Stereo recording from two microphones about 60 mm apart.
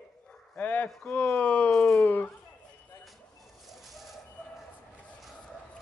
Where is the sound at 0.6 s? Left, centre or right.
Left.